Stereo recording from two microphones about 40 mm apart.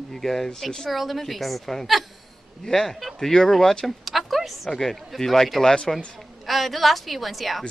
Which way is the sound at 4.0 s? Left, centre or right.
Centre.